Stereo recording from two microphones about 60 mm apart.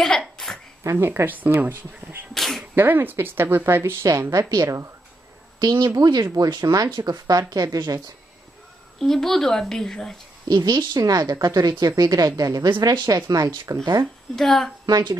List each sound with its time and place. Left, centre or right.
0.4 s a sound: centre
0.9 s speech: right
2.3 s speech: centre
2.7 s speech: right
4.0 s a woman's voice: right
5.7 s speech: right
9.0 s speech: centre
10.6 s speech: right
14.3 s a woman's voice: centre